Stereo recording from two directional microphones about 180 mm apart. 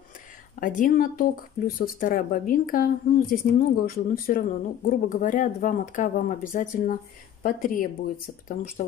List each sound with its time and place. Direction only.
0.6 s speech: 50° left (ahead or behind)